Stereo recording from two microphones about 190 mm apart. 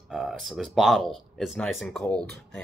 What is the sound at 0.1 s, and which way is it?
Speech, centre (ahead or behind).